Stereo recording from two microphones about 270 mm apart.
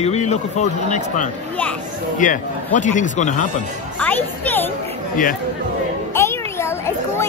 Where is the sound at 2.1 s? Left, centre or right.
Left.